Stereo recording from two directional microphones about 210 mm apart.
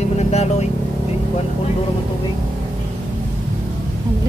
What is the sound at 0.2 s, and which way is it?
Vehicle, 30° left (ahead or behind).